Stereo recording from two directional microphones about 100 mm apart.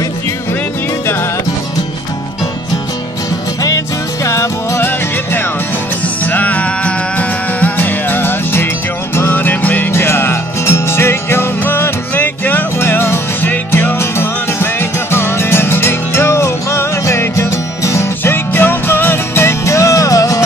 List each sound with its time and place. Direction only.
3.6 s music: 30° left (ahead or behind)